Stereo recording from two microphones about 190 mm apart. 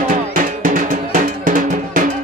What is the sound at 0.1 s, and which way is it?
Drum, 45° right (ahead or behind).